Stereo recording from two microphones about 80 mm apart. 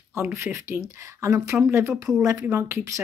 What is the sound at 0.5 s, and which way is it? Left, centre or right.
Speech, right.